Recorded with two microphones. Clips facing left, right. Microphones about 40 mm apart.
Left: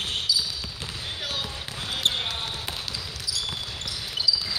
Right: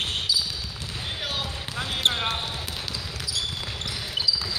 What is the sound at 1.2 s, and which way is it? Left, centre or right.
Basketball bounce, centre.